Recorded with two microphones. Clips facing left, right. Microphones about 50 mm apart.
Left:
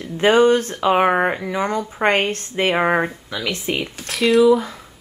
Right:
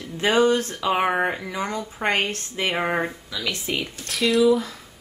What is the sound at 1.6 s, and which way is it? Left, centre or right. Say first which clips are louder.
Speech: left 7 dB; left.